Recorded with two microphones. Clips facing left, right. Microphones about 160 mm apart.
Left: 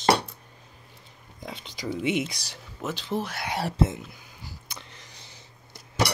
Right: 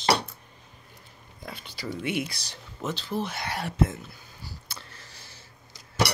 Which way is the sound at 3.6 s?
30° left (ahead or behind).